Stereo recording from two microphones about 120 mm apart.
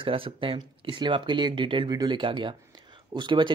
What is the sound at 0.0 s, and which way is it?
Speech, 45° right (ahead or behind).